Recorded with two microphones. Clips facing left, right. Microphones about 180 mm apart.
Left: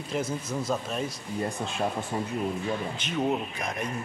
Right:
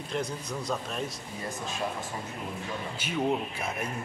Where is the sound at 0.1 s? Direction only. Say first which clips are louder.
Left 3 dB; 5° left (ahead or behind).